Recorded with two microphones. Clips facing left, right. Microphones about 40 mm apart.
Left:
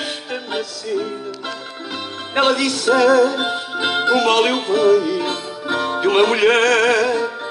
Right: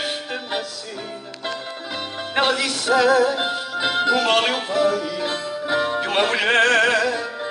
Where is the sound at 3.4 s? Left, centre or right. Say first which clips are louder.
Left 2 dB; centre.